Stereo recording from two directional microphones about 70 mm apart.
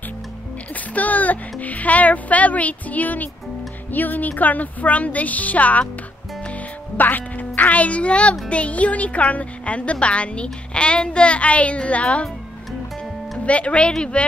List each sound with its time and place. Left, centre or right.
0.9 s a child's voice: left
7.0 s speech: left
13.5 s speech: centre